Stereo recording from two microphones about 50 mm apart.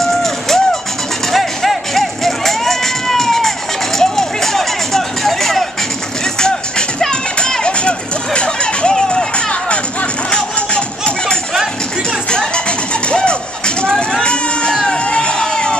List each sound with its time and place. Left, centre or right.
0.0 s music: centre
1.3 s a sound: centre
4.0 s music: centre
7.0 s music: centre
13.8 s a sound: centre
14.8 s crowd: centre